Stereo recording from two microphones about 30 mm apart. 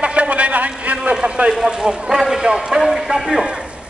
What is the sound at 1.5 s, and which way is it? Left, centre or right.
A man's voice, right.